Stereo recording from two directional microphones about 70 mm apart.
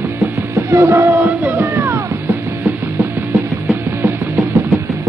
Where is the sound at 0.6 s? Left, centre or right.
Right.